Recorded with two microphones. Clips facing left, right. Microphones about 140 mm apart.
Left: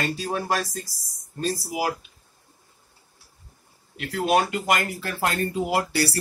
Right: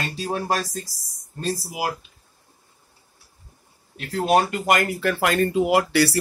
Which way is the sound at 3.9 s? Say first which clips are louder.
Right 2 dB; 35° right (ahead or behind).